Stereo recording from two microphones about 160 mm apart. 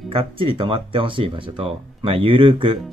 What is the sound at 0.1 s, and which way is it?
Speech, 35° right (ahead or behind).